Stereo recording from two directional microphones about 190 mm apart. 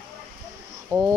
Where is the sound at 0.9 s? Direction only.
20° right (ahead or behind).